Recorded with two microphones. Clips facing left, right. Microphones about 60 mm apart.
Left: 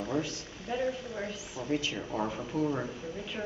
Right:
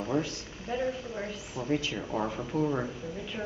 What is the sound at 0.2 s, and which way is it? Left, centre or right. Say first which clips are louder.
Speech: right 1 dB; centre.